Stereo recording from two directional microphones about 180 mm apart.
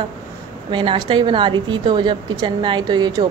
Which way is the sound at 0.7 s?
25° right (ahead or behind).